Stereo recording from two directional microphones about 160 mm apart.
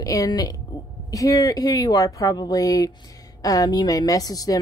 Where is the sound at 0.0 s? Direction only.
20° left (ahead or behind).